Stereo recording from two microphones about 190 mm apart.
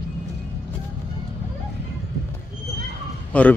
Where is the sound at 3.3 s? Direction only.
5° left (ahead or behind).